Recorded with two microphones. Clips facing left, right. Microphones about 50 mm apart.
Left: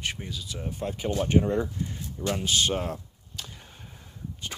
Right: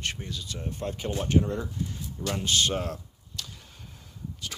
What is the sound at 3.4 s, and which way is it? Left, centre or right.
Whip, left.